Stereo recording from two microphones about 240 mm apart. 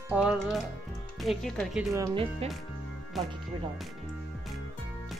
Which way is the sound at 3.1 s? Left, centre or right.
Centre.